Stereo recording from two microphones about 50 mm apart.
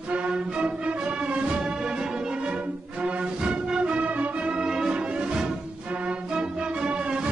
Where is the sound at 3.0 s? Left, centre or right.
Right.